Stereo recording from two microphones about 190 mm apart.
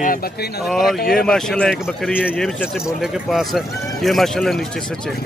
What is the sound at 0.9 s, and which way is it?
Speech, 55° left (ahead or behind).